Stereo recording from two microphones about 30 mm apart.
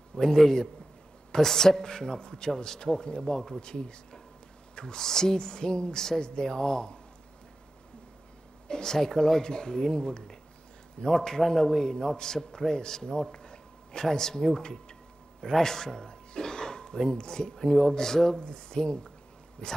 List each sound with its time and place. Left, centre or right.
0.1 s a man's voice: centre
8.6 s a sound: left
8.9 s speech: centre
11.1 s a man's voice: centre
13.3 s a sound: left
14.1 s speech: centre
15.4 s a man's voice: centre
16.1 s throat clearing: left
17.3 s a man's voice: centre
18.4 s speech: left